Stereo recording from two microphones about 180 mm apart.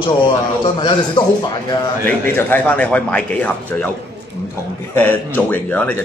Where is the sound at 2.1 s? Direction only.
10° left (ahead or behind).